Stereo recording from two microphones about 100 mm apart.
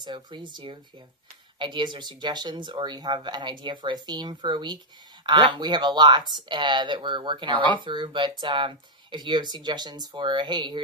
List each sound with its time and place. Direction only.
0.0 s speech: 50° right (ahead or behind)